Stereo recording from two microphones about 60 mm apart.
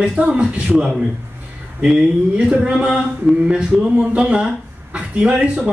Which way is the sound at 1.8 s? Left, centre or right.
Centre.